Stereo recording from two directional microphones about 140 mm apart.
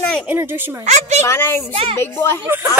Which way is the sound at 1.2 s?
20° left (ahead or behind).